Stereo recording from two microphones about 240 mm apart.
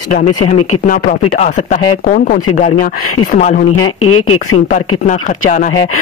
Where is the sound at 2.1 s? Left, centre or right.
Left.